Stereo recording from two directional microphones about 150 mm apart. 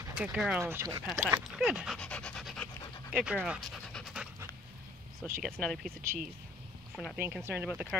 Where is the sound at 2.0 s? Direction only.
5° left (ahead or behind).